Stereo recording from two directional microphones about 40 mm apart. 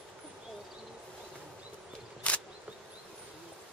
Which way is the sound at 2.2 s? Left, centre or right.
Left.